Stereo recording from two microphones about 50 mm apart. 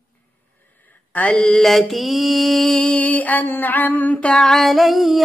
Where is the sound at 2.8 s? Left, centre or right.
Left.